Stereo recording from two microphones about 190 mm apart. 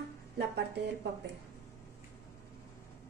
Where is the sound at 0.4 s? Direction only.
60° right (ahead or behind).